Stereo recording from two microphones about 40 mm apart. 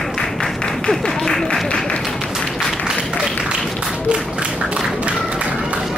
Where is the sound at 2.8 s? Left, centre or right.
Right.